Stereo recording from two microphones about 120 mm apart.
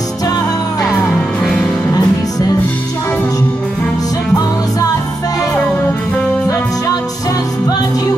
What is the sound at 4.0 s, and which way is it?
Music, 30° left (ahead or behind).